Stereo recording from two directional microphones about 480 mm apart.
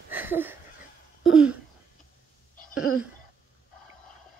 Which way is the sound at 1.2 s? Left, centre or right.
Centre.